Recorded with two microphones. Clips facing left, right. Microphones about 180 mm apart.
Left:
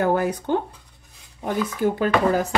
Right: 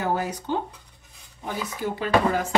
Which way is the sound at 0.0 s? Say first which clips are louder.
Left 6 dB; 55° left (ahead or behind).